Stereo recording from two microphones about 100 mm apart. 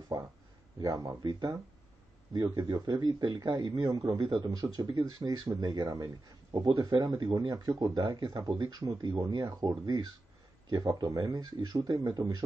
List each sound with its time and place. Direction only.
0.7 s speech: 30° right (ahead or behind)
1.2 s a man's voice: 45° right (ahead or behind)
11.1 s a man's voice: 35° right (ahead or behind)